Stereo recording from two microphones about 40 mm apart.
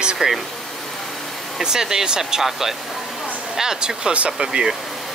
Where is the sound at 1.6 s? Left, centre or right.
Centre.